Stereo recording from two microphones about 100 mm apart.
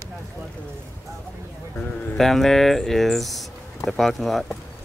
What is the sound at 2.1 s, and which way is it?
Speech, 5° left (ahead or behind).